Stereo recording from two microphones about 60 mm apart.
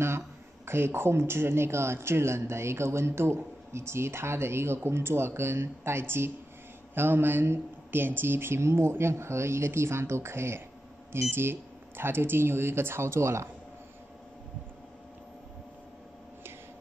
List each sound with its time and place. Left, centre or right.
0.7 s speech: right